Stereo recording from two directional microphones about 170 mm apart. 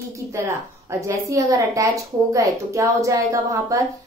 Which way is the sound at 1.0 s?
20° right (ahead or behind).